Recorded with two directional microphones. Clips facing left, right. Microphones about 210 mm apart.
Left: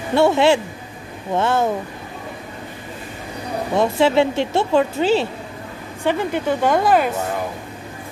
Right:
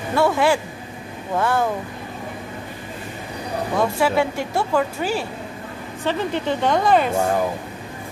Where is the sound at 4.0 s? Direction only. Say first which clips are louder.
Left 4 dB; 25° left (ahead or behind).